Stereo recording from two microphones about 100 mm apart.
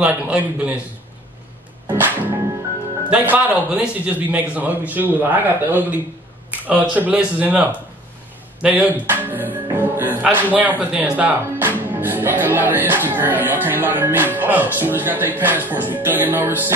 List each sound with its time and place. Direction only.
0.0 s speech: 10° right (ahead or behind)
2.0 s speech: 20° right (ahead or behind)